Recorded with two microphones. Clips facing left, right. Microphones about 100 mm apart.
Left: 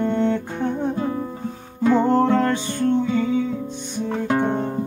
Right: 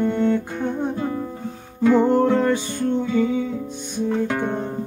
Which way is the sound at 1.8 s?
5° right (ahead or behind).